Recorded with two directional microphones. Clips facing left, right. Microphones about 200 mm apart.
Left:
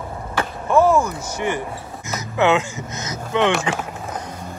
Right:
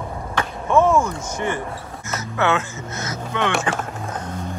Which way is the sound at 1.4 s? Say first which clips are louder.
Left 2 dB; 10° left (ahead or behind).